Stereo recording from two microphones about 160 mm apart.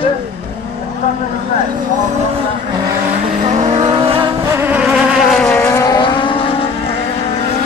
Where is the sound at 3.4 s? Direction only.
45° right (ahead or behind).